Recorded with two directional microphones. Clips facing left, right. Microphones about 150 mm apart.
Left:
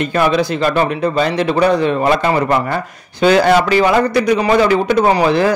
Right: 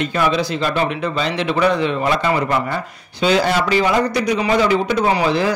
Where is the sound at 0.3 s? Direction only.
55° left (ahead or behind).